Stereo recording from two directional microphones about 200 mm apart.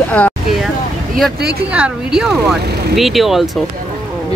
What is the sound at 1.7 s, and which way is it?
Speech, 5° right (ahead or behind).